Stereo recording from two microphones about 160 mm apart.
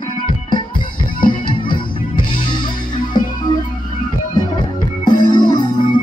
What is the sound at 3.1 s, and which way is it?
Music, 30° left (ahead or behind).